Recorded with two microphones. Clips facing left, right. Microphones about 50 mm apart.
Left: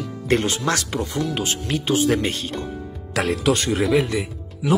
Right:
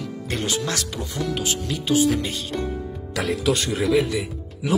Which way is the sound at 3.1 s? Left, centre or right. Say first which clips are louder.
Left 2 dB; left.